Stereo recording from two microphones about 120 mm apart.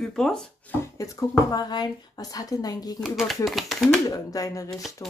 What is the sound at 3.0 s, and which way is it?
Speech, centre (ahead or behind).